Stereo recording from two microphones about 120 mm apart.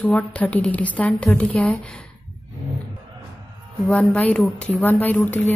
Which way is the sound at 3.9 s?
10° left (ahead or behind).